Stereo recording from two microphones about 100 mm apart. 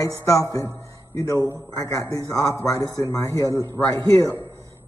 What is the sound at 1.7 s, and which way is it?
A man's voice, 35° left (ahead or behind).